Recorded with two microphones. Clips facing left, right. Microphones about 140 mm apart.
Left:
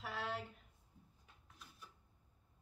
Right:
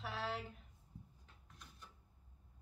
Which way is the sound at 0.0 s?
Centre (ahead or behind).